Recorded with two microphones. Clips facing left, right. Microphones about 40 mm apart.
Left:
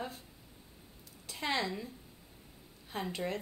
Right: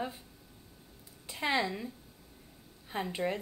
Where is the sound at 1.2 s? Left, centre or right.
Centre.